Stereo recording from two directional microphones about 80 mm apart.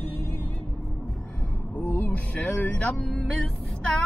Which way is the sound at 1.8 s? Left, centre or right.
Left.